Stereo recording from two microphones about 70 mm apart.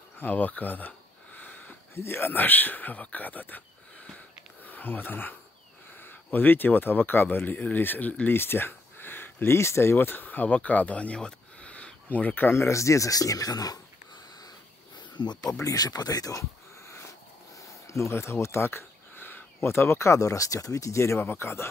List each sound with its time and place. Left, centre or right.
0.2 s a sound: left
2.0 s speech: left
4.6 s speech: left
8.4 s speech: left
15.1 s speech: left
15.6 s speech: left
17.6 s speech: left